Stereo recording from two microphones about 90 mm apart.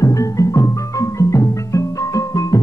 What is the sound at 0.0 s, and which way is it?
Music, 40° left (ahead or behind).